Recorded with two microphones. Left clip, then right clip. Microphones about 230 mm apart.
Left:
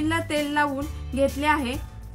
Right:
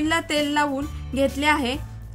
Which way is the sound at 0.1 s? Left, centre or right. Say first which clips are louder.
Right 3 dB; right.